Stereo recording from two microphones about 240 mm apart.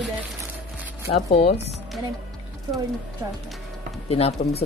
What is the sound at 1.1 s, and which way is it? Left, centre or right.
Speech, left.